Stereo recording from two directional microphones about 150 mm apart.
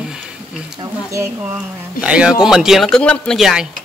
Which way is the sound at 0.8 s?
20° right (ahead or behind).